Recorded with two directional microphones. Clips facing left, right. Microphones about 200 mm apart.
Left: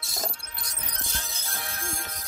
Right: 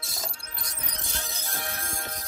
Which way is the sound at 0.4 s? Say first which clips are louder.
Right 1 dB; 40° right (ahead or behind).